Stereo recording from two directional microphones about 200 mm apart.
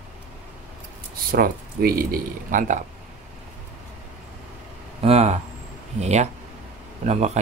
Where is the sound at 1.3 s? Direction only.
45° right (ahead or behind).